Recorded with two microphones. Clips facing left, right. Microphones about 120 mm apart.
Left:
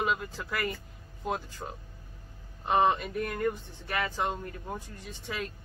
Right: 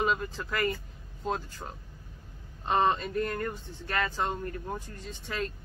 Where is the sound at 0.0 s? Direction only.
5° left (ahead or behind).